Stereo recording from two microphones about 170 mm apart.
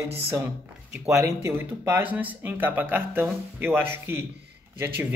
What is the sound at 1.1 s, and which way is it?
A man's voice, 15° right (ahead or behind).